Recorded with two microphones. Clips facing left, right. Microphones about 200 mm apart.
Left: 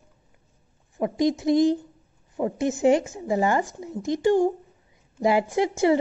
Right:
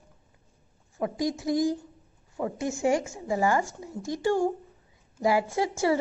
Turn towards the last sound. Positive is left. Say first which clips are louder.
# left 5 dB
turn(degrees=20)  # may be behind; listen again after turning